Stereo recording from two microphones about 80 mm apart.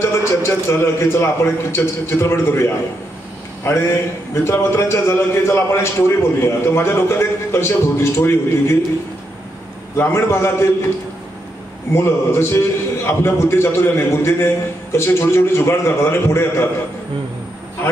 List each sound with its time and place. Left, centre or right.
0.2 s a man's voice: left
9.9 s a man's voice: left
11.9 s a man's voice: left